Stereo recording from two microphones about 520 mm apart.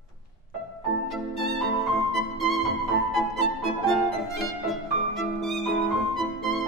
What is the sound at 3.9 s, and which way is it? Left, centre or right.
Violin, centre.